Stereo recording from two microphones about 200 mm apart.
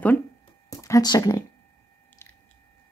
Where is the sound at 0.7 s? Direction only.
15° left (ahead or behind).